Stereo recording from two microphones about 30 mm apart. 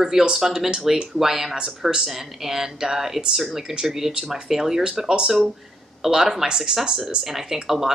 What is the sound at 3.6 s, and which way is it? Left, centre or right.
Speech, right.